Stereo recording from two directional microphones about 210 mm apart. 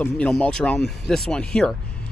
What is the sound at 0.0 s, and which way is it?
Speech, 5° left (ahead or behind).